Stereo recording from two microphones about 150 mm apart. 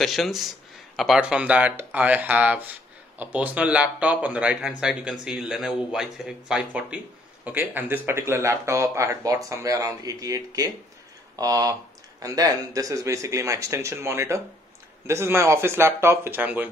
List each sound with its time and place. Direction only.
0.0 s speech: centre (ahead or behind)